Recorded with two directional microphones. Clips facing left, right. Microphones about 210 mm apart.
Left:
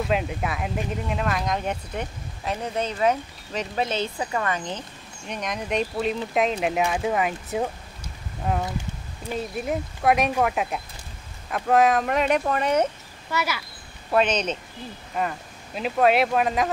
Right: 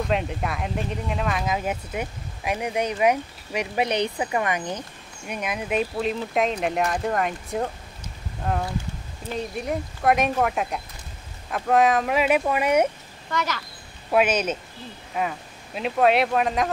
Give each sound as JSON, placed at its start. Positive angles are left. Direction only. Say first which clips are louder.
{"t": 0.0, "sound": "speech", "louder": "even", "side_deg": 0}
{"t": 13.3, "sound": "speech", "louder": "even", "side_deg": 10}
{"t": 14.1, "sound": "speech", "louder": "right 1 dB", "side_deg": -10}